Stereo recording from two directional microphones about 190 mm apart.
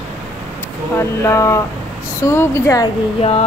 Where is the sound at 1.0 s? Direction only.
15° left (ahead or behind).